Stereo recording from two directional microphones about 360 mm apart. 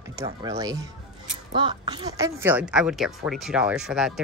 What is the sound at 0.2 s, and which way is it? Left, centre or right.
Speech, centre.